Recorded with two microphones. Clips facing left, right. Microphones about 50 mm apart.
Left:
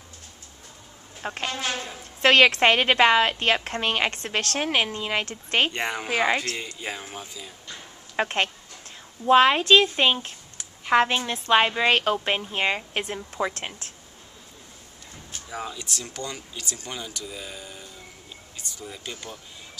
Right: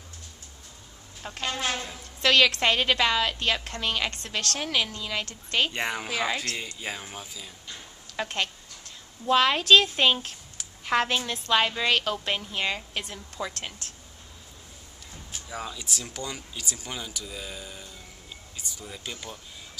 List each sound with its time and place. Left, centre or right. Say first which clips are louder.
1.2 s a woman's voice: left 1 dB; left
5.7 s speech: left 1 dB; centre
6.0 s a woman's voice: left 5 dB; left
6.5 s speech: left 1 dB; centre
8.2 s a woman's voice: left 5 dB; left
15.5 s speech: left 2 dB; centre
15.8 s speech: left 1 dB; centre